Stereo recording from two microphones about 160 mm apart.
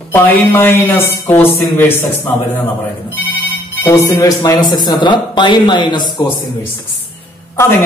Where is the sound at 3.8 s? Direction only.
20° left (ahead or behind).